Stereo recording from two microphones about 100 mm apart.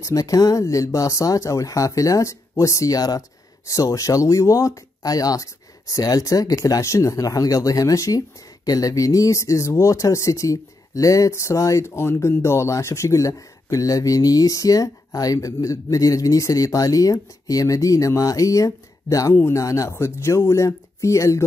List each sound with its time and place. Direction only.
0.0 s speech: 35° left (ahead or behind)